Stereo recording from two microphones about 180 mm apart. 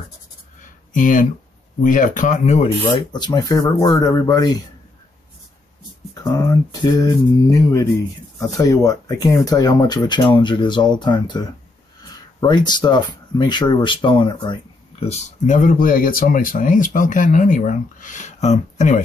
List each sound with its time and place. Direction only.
0.6 s a sound: 45° left (ahead or behind)
1.8 s speech: 45° left (ahead or behind)
2.9 s speech: 25° left (ahead or behind)
6.1 s speech: 15° left (ahead or behind); by 19.0 s 40° left (ahead or behind)